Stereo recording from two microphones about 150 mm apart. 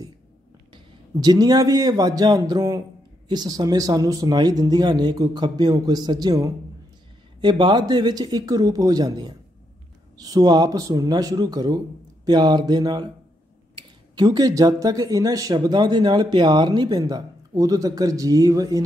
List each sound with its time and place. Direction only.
0.7 s a man's voice: 25° right (ahead or behind)